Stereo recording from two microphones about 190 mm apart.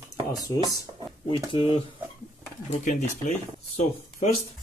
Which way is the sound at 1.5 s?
30° left (ahead or behind).